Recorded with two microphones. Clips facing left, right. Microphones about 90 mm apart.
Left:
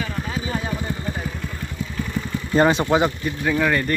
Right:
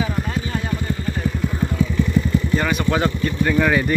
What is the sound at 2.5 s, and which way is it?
Speech, 30° left (ahead or behind).